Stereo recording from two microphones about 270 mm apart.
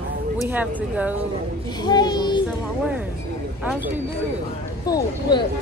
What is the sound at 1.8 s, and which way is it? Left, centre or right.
Speech, centre.